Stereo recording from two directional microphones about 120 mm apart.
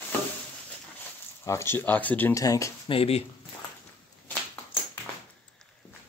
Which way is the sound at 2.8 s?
55° left (ahead or behind).